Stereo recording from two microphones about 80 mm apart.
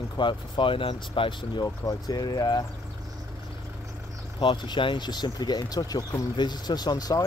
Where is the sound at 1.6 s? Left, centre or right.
Left.